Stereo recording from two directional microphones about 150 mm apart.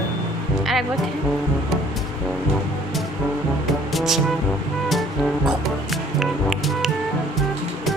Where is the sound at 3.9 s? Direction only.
Centre (ahead or behind).